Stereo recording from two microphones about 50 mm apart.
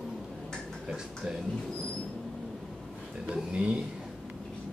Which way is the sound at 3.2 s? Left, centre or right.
Right.